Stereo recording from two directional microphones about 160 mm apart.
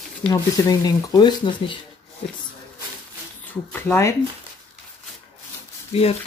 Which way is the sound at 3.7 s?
15° left (ahead or behind).